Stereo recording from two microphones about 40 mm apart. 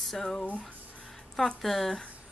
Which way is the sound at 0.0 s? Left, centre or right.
Centre.